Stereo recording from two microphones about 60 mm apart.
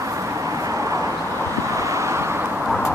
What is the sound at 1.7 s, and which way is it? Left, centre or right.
Vehicle, right.